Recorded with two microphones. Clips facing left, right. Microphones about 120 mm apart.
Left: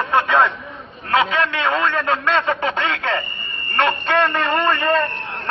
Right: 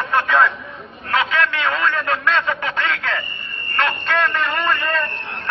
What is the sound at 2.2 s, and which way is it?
Radio, 30° left (ahead or behind).